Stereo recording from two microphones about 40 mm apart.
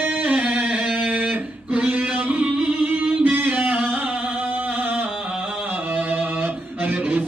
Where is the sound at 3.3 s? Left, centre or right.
Right.